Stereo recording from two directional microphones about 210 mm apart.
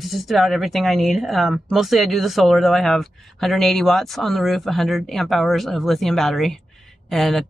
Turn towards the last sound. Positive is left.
turn(degrees=0)  # may be behind; listen again after turning